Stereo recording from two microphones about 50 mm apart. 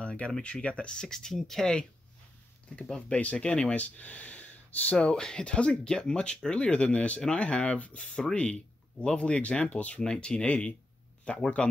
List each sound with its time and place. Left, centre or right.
0.0 s a sound: left
0.4 s speech: left
3.0 s speech: left
4.9 s speech: centre
10.0 s speech: centre